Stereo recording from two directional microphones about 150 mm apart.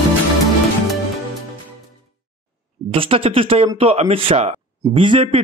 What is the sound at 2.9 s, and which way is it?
Speech, 40° right (ahead or behind).